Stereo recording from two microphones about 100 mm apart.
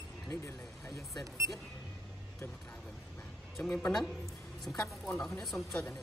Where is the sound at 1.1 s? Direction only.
Centre (ahead or behind).